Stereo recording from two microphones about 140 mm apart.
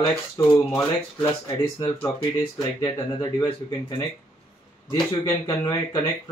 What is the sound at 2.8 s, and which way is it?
Speech, 35° left (ahead or behind).